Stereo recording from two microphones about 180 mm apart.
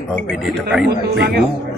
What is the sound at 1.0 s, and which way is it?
Speech, 60° right (ahead or behind).